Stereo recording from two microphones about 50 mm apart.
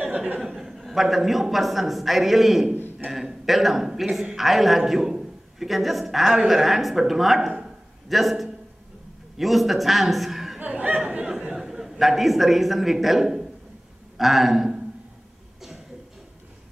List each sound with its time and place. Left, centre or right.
0.6 s a woman's voice: centre
10.6 s speech: right
11.2 s a man's voice: centre